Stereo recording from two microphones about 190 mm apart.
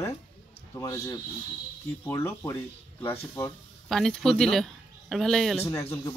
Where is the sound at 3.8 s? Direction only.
Centre (ahead or behind).